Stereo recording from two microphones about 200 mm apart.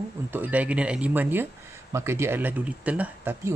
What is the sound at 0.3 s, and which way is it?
Speech, 10° right (ahead or behind).